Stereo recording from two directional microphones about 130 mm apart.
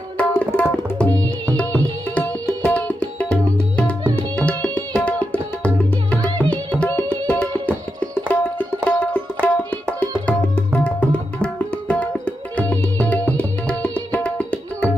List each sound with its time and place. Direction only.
0.2 s tabla: 15° left (ahead or behind)
1.6 s music: 10° left (ahead or behind)
4.1 s tabla: 15° left (ahead or behind)
6.5 s music: 10° left (ahead or behind)